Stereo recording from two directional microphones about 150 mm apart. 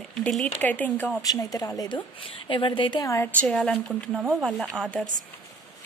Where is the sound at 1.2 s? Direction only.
25° left (ahead or behind).